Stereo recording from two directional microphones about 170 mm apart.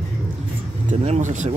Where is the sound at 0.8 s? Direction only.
45° right (ahead or behind).